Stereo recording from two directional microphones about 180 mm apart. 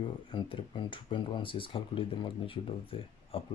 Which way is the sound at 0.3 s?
30° left (ahead or behind).